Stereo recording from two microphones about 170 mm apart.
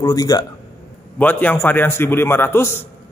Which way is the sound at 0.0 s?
20° left (ahead or behind).